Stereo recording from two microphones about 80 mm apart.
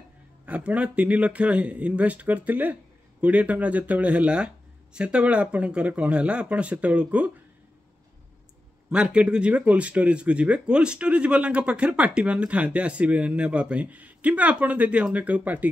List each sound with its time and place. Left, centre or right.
0.5 s speech: centre
8.9 s speech: centre